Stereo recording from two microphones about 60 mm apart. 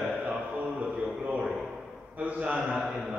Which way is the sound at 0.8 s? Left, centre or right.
Right.